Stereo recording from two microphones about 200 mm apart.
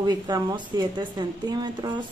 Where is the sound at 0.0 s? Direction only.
20° right (ahead or behind).